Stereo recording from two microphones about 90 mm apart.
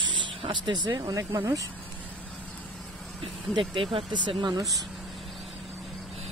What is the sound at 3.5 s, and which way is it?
Speech, 70° right (ahead or behind).